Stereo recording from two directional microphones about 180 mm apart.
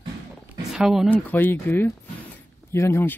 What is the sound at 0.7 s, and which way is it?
Speech, 5° right (ahead or behind).